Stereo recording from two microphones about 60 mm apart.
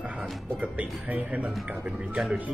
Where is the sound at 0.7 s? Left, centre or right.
Right.